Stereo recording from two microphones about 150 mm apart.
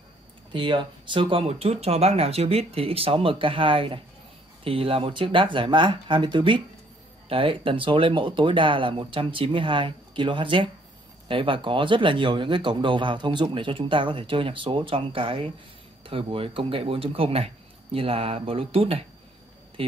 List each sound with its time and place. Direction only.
0.5 s speech: 35° right (ahead or behind)